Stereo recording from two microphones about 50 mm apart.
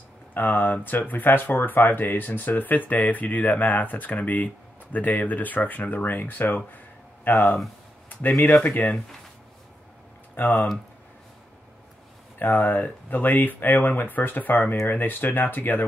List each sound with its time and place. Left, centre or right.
0.3 s speech: left
8.6 s speech: left
10.4 s speech: left
12.4 s speech: left